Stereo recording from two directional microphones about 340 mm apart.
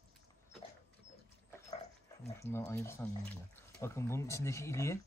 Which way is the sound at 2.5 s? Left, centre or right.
Centre.